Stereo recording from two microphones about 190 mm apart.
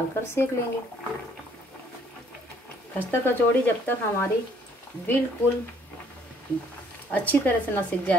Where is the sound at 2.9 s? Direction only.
10° left (ahead or behind).